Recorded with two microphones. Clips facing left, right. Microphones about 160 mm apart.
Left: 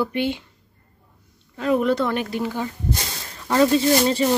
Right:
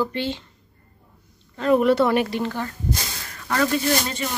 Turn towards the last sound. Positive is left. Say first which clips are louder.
# left 6 dB
turn(degrees=30)  # may be behind; listen again after turning